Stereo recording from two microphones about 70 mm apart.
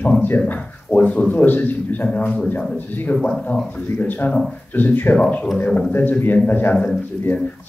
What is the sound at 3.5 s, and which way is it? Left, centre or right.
A man's voice, left.